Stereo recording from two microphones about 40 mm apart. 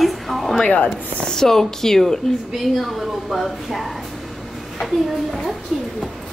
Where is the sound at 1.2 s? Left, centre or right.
Centre.